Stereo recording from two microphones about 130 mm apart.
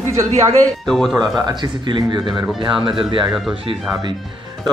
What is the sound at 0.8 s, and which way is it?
Speech, centre (ahead or behind).